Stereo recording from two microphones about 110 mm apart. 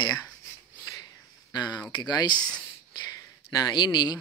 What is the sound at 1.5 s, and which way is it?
Speech, 40° left (ahead or behind).